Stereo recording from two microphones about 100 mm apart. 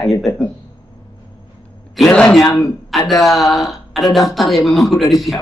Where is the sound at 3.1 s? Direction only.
Centre (ahead or behind).